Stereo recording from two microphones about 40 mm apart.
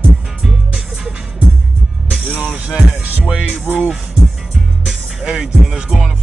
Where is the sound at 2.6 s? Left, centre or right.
Right.